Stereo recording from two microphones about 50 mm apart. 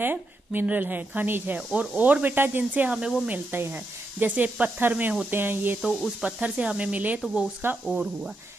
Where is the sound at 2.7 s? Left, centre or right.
Right.